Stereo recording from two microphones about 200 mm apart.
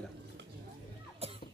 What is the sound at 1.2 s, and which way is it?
Music, 30° right (ahead or behind).